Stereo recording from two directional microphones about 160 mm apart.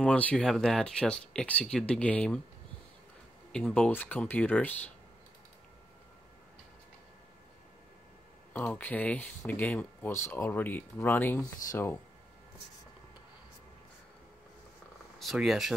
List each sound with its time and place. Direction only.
0.0 s speech: 10° left (ahead or behind)
3.5 s speech: 5° left (ahead or behind)
8.5 s speech: 10° left (ahead or behind)
15.1 s speech: centre (ahead or behind)